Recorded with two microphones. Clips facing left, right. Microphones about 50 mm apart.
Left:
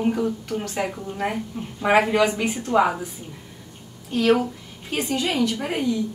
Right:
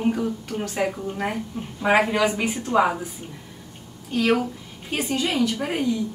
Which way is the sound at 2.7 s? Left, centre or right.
Centre.